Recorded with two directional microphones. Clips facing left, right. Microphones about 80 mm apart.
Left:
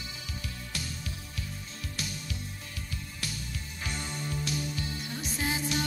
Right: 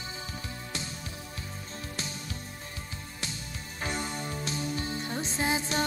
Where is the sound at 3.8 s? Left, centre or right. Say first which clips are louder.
Right 4 dB; right.